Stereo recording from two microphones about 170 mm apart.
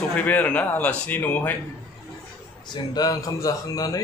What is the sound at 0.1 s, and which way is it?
Speech, 10° left (ahead or behind).